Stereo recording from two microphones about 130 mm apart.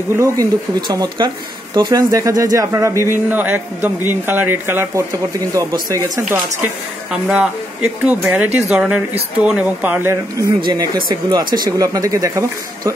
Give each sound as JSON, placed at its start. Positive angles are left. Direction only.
{"t": 0.1, "sound": "speech", "side_deg": -20}
{"t": 0.7, "sound": "speech", "side_deg": -30}
{"t": 5.5, "sound": "speech", "side_deg": -25}
{"t": 6.2, "sound": "speech", "side_deg": -10}
{"t": 10.6, "sound": "speech", "side_deg": -30}